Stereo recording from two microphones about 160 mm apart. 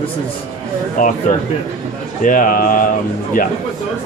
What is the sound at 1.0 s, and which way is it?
Speech, 60° left (ahead or behind).